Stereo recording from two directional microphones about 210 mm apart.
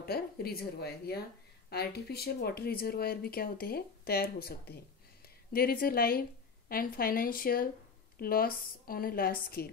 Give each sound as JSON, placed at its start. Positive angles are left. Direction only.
{"t": 0.0, "sound": "speech", "side_deg": 45}